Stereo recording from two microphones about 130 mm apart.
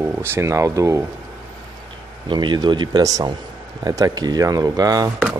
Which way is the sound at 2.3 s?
35° right (ahead or behind).